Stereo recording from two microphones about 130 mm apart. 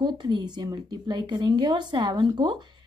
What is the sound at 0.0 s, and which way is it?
Speech, 35° right (ahead or behind).